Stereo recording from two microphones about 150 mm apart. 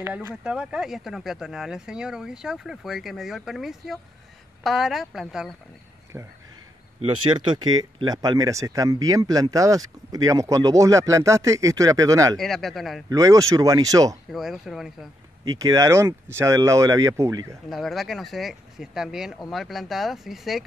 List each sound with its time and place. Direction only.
0.0 s speech: 10° right (ahead or behind)
6.1 s speech: 15° right (ahead or behind)
7.0 s speech: 30° right (ahead or behind)
12.4 s speech: centre (ahead or behind)
13.1 s speech: 20° right (ahead or behind)
14.3 s speech: centre (ahead or behind)
15.4 s speech: 25° right (ahead or behind)
17.6 s speech: centre (ahead or behind)